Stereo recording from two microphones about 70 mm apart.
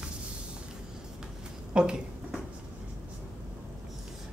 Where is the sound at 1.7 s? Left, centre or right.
Centre.